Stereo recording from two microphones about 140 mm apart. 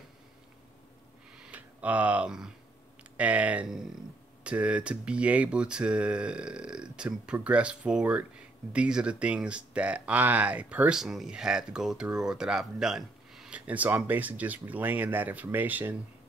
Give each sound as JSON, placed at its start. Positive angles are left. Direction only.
{"t": 1.4, "sound": "speech", "side_deg": -10}